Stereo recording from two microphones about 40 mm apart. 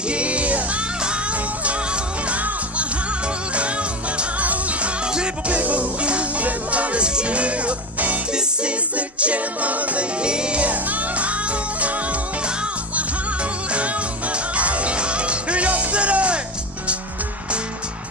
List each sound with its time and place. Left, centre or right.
0.1 s music: right
2.2 s music: right
8.3 s music: right
8.9 s music: right
10.2 s music: right
13.7 s music: right